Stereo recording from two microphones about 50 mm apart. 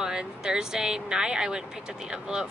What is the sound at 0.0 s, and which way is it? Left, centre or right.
Speech, centre.